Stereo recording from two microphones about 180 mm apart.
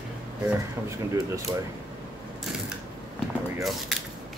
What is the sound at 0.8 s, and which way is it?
Speech, 15° right (ahead or behind).